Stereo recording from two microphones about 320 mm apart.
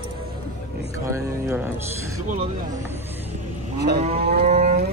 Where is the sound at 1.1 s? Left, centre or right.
Centre.